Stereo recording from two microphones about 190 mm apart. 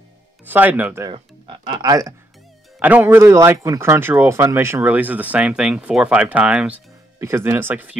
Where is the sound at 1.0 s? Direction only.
25° right (ahead or behind); by 8.0 s 5° right (ahead or behind).